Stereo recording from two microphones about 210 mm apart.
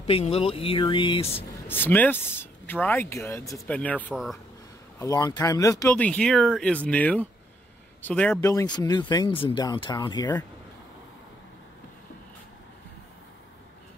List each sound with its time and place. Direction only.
0.0 s speech: 30° left (ahead or behind)
1.7 s speech: 10° left (ahead or behind)
4.9 s speech: 15° left (ahead or behind)